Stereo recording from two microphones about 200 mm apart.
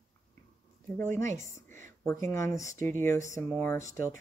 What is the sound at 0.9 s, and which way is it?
Speech, 10° left (ahead or behind).